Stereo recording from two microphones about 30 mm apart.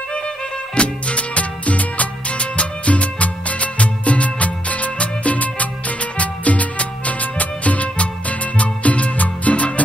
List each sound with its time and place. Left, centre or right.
0.7 s music: left
2.3 s music: left